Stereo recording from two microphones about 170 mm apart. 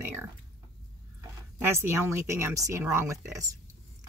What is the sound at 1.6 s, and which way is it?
Speech, 15° right (ahead or behind).